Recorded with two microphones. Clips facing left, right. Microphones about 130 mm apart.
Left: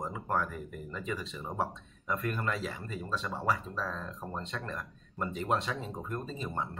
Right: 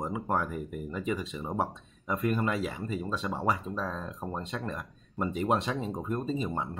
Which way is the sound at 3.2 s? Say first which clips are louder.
Right 1 dB; 25° right (ahead or behind).